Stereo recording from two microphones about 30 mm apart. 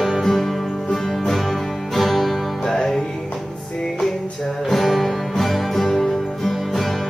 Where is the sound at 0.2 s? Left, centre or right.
Centre.